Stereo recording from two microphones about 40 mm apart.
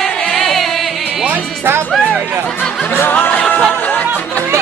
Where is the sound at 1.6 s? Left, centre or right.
Right.